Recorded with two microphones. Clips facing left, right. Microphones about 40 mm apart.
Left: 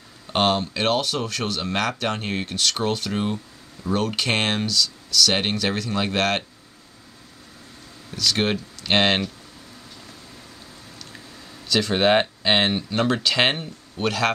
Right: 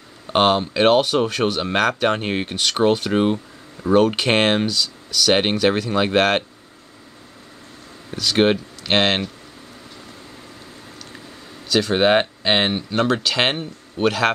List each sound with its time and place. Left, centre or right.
0.3 s speech: centre
8.1 s speech: centre
8.9 s speech: centre
11.7 s speech: centre